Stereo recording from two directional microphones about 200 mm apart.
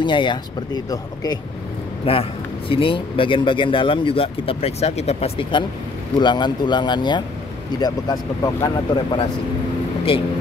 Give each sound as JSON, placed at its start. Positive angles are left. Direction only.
{"t": 0.0, "sound": "speech", "side_deg": 25}